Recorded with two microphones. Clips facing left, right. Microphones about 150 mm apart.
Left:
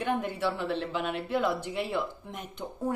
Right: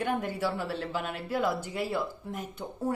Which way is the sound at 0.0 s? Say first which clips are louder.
Left 1 dB; 45° right (ahead or behind).